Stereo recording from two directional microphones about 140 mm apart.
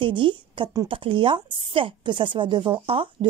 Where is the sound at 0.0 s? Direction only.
35° right (ahead or behind).